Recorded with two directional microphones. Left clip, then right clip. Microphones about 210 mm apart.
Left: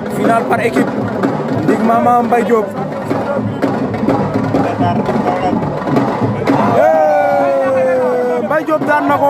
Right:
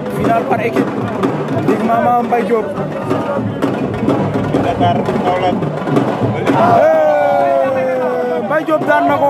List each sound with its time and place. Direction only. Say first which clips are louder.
2.0 s speech: left 2 dB; 10° left (ahead or behind)
4.8 s speech: right 1 dB; 45° right (ahead or behind)
6.8 s a sound: even; centre (ahead or behind)
8.5 s speech: right 3 dB; centre (ahead or behind)